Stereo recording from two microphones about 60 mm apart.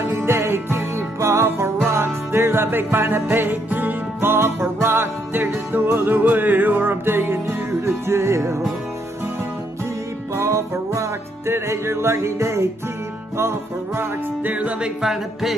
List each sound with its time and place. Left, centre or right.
0.0 s music: right
10.3 s music: right
14.4 s music: right
15.0 s a sound: centre